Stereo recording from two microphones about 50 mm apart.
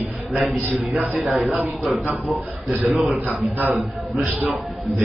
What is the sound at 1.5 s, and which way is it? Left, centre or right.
Speech, right.